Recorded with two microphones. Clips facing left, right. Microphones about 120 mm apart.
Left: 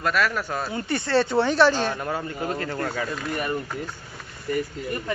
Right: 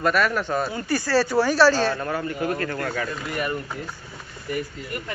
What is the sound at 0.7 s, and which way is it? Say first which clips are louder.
Speech: left 2 dB; 25° left (ahead or behind).